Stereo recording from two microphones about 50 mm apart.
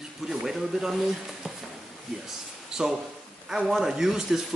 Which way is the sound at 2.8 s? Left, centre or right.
Centre.